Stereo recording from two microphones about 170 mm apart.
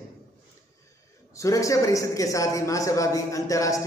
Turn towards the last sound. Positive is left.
turn(degrees=20)  # may be behind; listen again after turning